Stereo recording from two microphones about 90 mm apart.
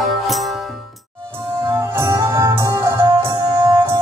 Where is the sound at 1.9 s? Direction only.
35° right (ahead or behind).